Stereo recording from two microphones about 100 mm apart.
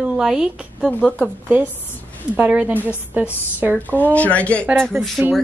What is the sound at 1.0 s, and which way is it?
Speech, 5° left (ahead or behind).